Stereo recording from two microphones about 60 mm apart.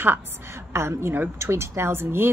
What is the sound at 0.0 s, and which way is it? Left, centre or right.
Speech, right.